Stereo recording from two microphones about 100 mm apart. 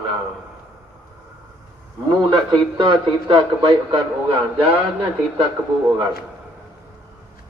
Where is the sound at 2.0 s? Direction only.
50° right (ahead or behind); by 4.7 s 65° right (ahead or behind).